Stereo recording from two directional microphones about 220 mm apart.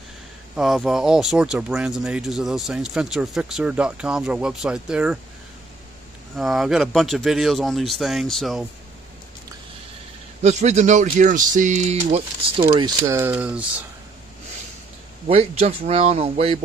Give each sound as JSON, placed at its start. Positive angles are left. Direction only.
{"t": 0.6, "sound": "speech", "side_deg": 0}
{"t": 6.3, "sound": "speech", "side_deg": 0}
{"t": 10.4, "sound": "speech", "side_deg": -30}
{"t": 13.0, "sound": "speech", "side_deg": -10}
{"t": 15.2, "sound": "speech", "side_deg": -25}